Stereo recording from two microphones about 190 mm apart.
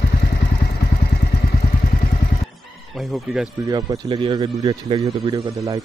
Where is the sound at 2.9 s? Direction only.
5° right (ahead or behind).